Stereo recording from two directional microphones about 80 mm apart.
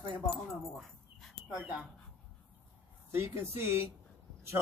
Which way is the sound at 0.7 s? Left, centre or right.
Centre.